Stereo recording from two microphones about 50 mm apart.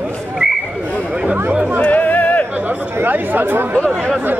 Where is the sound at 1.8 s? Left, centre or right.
Left.